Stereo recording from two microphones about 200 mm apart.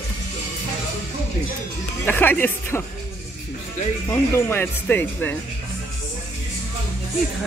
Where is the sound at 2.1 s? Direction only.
10° left (ahead or behind).